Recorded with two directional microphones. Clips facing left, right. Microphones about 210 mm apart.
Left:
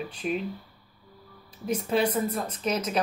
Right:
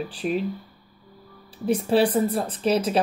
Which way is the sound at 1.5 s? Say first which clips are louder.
Right 6 dB; 30° right (ahead or behind).